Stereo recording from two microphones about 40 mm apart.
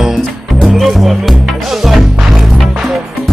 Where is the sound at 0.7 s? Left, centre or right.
Centre.